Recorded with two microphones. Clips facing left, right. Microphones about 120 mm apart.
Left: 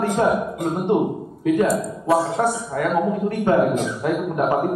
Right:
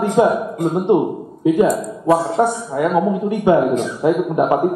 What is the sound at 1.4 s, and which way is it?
A man's voice, 20° right (ahead or behind).